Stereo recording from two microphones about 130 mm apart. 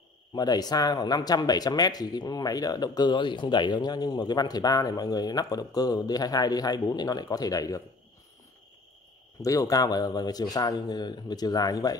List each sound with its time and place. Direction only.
0.3 s speech: 30° left (ahead or behind)
9.4 s speech: 25° left (ahead or behind)